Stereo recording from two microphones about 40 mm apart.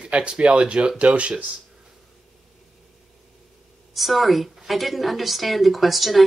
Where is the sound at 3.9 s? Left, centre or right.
Centre.